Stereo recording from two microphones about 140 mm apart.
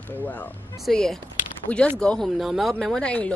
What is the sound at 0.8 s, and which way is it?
Speech, centre (ahead or behind).